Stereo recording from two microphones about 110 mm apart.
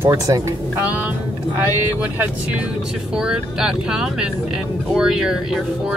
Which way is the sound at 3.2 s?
5° right (ahead or behind).